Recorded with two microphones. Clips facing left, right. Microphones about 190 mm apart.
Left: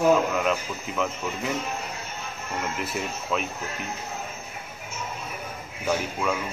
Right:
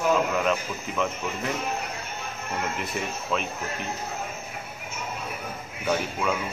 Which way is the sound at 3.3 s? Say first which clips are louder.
Left 1 dB; 5° left (ahead or behind).